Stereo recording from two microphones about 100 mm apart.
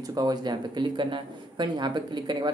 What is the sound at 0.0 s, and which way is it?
A man's voice, 40° right (ahead or behind).